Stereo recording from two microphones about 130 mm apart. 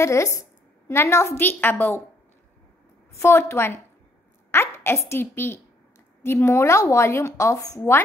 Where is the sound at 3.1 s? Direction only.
20° left (ahead or behind).